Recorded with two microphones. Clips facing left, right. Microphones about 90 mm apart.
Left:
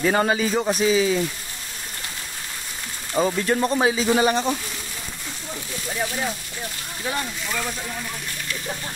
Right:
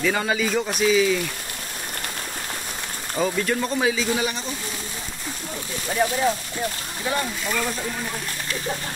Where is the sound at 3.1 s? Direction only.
30° left (ahead or behind).